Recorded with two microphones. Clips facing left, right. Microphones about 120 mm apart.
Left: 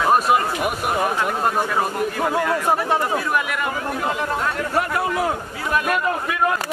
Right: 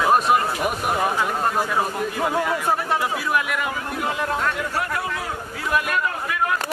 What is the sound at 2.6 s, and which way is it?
Speech, 20° left (ahead or behind).